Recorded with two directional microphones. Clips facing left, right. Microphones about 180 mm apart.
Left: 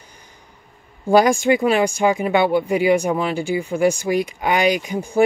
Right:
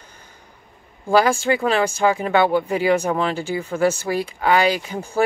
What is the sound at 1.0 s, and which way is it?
Speech, 15° left (ahead or behind).